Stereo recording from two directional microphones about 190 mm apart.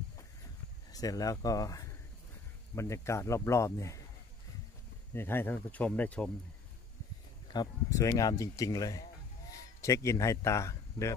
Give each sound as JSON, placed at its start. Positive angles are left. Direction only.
{"t": 0.9, "sound": "speech", "side_deg": 20}
{"t": 5.1, "sound": "speech", "side_deg": 10}
{"t": 7.5, "sound": "a man's voice", "side_deg": 15}